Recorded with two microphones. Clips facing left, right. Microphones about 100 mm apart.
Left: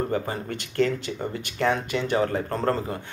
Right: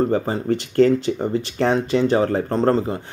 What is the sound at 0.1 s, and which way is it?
Speech, 30° right (ahead or behind).